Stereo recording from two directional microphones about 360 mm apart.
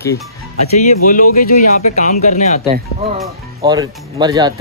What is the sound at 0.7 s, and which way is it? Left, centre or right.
Speech, left.